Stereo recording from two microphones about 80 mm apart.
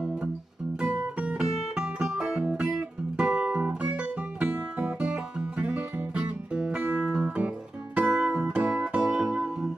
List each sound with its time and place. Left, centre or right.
1.4 s music: centre